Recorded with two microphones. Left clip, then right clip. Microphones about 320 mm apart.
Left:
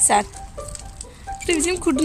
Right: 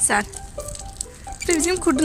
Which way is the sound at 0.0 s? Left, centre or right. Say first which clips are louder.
Left 3 dB; centre.